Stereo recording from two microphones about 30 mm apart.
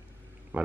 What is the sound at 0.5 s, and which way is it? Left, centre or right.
Speech, right.